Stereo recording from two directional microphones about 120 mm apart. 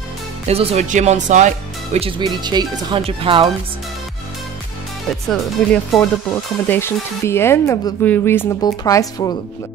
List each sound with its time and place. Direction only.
0.5 s speech: 55° right (ahead or behind); by 2.0 s 85° right
2.0 s speech: 45° right (ahead or behind)
3.0 s speech: 50° right (ahead or behind)
5.6 s speech: 10° left (ahead or behind)
8.5 s speech: 30° left (ahead or behind)